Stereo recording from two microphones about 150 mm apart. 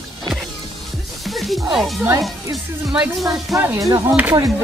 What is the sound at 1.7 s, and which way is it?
Speech, centre (ahead or behind).